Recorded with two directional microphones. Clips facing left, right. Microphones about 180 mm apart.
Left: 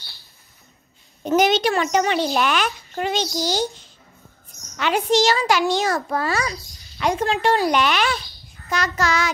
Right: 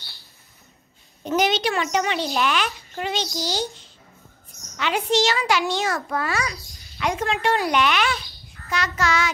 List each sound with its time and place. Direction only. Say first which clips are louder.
1.2 s a child's voice: left 4 dB; 45° left (ahead or behind)
4.7 s a child's voice: left 3 dB; 45° left (ahead or behind)